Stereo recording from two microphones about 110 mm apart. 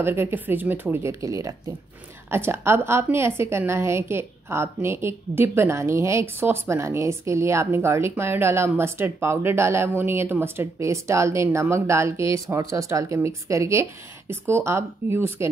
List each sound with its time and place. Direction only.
0.0 s a woman's voice: 20° right (ahead or behind)
1.2 s a woman's voice: 30° right (ahead or behind)